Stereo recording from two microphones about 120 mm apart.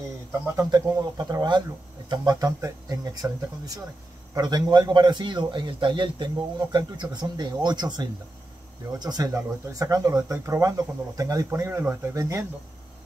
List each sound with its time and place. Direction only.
0.6 s a man's voice: 35° right (ahead or behind)